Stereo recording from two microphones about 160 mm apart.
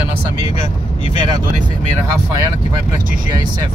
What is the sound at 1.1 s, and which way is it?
Speech, 25° right (ahead or behind).